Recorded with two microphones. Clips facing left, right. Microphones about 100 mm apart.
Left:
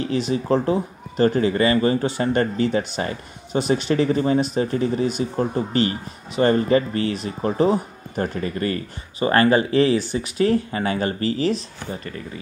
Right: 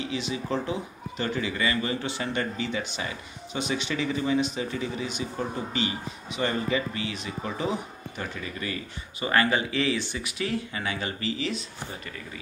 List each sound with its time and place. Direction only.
0.1 s speech: 45° left (ahead or behind)